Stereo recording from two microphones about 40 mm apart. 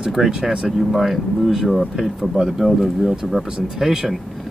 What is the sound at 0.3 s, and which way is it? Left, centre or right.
Speech, right.